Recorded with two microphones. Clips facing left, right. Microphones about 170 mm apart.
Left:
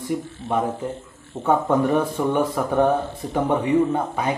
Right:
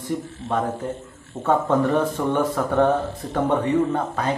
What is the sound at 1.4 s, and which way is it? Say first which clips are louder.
Speech: even; 10° left (ahead or behind).